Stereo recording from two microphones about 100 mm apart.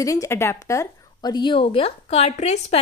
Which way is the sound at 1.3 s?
50° left (ahead or behind).